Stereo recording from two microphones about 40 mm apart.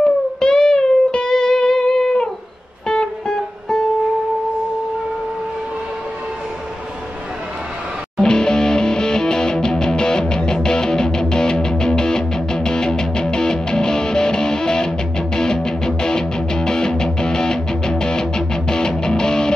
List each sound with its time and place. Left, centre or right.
0.0 s music: centre
8.2 s music: centre